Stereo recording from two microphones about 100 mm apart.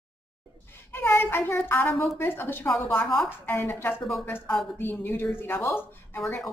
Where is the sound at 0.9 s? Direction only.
25° left (ahead or behind).